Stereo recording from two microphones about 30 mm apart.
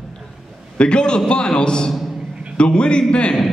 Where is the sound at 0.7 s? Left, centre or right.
Left.